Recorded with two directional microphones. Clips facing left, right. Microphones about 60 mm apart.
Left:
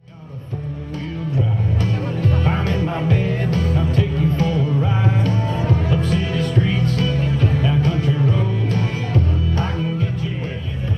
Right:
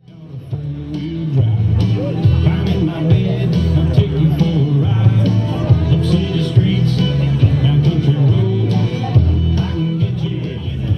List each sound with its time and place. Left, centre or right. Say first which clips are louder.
1.8 s music: right 4 dB; left